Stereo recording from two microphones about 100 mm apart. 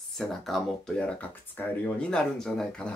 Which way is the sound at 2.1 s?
5° left (ahead or behind).